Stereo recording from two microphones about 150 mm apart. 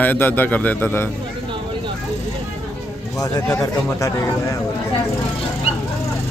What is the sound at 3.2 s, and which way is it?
Speech, 20° left (ahead or behind).